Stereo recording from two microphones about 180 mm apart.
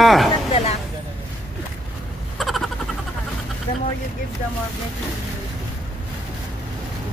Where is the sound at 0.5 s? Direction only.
35° left (ahead or behind).